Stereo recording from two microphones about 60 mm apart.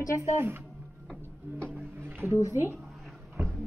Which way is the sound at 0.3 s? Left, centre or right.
Right.